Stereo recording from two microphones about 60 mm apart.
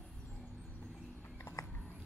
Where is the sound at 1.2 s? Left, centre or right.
Left.